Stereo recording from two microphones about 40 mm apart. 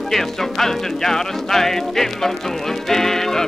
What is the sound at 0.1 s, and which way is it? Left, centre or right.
Music, centre.